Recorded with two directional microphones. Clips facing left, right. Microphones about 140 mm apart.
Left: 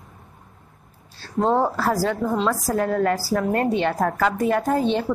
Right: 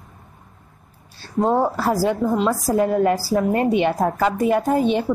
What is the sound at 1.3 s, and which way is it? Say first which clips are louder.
A woman's voice: right 1 dB; 5° right (ahead or behind).